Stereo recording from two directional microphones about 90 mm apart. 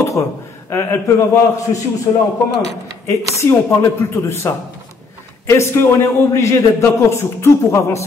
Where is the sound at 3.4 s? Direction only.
30° left (ahead or behind).